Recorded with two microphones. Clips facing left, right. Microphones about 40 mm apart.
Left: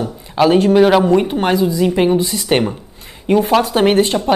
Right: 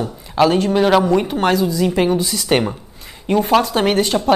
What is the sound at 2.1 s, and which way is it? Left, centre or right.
Speech, left.